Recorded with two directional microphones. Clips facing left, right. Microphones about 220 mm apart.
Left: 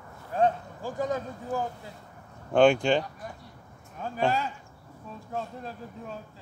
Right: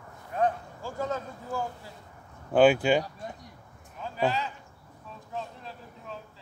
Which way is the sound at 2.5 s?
5° right (ahead or behind).